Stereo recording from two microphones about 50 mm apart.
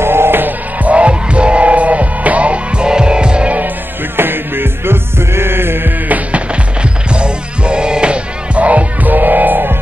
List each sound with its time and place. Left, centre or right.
0.0 s music: right
4.2 s music: right
6.0 s music: right